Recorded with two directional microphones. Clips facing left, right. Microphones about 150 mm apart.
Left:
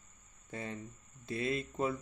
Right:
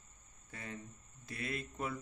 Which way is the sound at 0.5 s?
25° left (ahead or behind).